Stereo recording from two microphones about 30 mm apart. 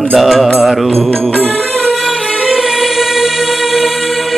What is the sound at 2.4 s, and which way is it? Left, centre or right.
Music, centre.